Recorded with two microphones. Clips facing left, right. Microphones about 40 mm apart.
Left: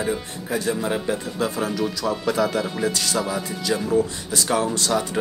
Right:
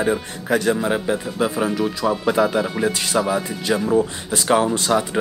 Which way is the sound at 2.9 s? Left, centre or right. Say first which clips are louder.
Right 4 dB; right.